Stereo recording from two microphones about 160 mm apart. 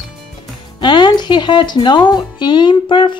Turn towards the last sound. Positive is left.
turn(degrees=30)  # may be behind; listen again after turning